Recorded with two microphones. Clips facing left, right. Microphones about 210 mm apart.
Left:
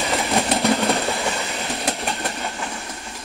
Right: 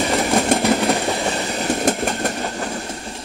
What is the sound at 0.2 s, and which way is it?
Train, 50° right (ahead or behind).